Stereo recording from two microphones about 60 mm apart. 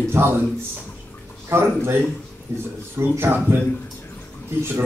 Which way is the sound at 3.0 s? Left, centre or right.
Right.